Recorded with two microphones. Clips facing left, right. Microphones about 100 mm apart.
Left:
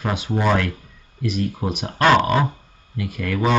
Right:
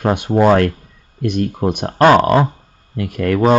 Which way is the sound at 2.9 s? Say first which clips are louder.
Right 8 dB; 50° right (ahead or behind).